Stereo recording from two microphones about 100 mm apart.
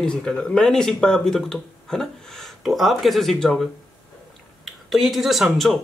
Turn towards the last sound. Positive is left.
turn(degrees=0)  # may be behind; listen again after turning